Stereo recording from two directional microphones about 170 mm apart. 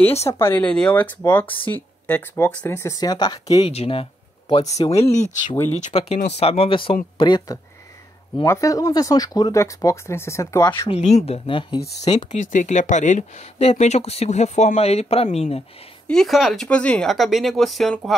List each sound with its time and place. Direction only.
0.3 s speech: 15° left (ahead or behind)
3.6 s speech: 35° left (ahead or behind)
5.1 s speech: 45° left (ahead or behind); by 10.9 s 15° left (ahead or behind)
10.9 s speech: 40° left (ahead or behind)
12.2 s speech: 50° left (ahead or behind)
16.1 s speech: centre (ahead or behind)